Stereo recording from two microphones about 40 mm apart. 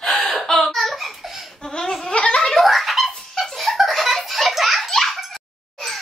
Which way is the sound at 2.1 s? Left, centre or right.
Left.